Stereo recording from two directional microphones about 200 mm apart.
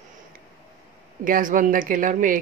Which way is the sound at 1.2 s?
40° right (ahead or behind).